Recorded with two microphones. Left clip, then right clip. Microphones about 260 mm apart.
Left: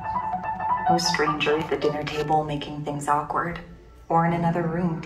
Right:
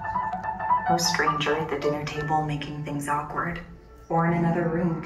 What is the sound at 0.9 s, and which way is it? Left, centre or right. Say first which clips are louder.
Speech: left 1 dB; left.